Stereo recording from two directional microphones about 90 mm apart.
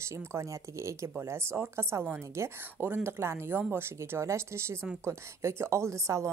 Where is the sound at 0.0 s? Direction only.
30° right (ahead or behind).